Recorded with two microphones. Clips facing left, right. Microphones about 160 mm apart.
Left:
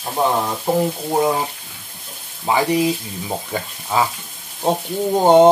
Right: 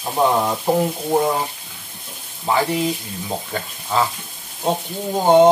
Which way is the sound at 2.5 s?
15° left (ahead or behind).